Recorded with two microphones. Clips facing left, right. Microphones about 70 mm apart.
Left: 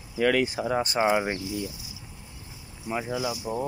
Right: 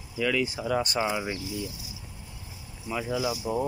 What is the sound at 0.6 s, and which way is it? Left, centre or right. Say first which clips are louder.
Speech: left 1 dB; left.